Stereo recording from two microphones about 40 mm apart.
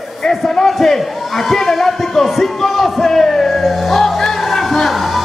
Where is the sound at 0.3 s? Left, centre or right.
Centre.